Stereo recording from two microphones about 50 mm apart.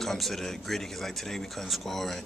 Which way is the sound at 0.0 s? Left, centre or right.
Centre.